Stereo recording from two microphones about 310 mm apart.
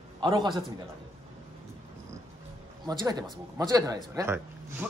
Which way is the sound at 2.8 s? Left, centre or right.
Centre.